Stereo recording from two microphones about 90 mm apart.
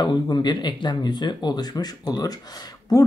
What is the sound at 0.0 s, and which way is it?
Speech, 55° left (ahead or behind).